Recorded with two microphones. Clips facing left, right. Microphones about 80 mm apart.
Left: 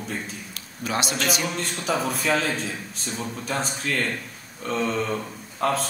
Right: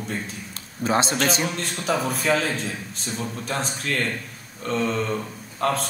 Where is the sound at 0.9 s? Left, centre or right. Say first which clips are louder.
Right 5 dB; right.